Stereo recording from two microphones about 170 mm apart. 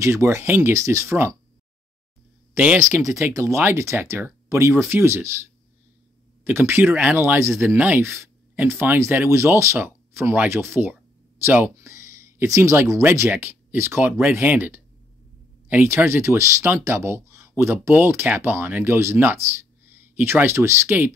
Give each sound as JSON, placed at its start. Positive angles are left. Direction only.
{"t": 0.0, "sound": "speech", "side_deg": -15}
{"t": 2.5, "sound": "speech", "side_deg": -10}
{"t": 2.8, "sound": "speech", "side_deg": -20}
{"t": 6.4, "sound": "speech", "side_deg": -15}